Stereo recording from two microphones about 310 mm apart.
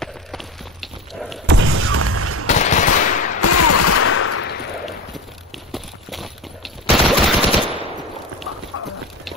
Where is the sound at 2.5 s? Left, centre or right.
Left.